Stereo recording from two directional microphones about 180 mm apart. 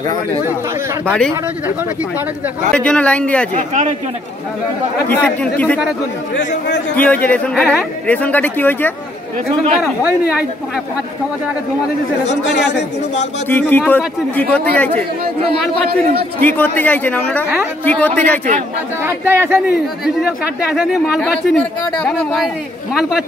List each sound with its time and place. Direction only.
2.7 s speech: 5° left (ahead or behind)
3.5 s speech: 40° right (ahead or behind)
5.1 s speech: 10° left (ahead or behind)
7.0 s speech: 10° left (ahead or behind)
10.0 s speech: 10° right (ahead or behind)
12.4 s speech: 70° left (ahead or behind)
13.5 s speech: 10° left (ahead or behind)
15.9 s a man's voice: 55° right (ahead or behind)
16.3 s speech: 10° left (ahead or behind)
19.0 s speech: 15° right (ahead or behind)
20.2 s speech: centre (ahead or behind)